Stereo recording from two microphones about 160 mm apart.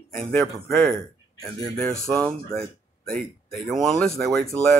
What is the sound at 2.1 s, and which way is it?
Speech, 5° left (ahead or behind).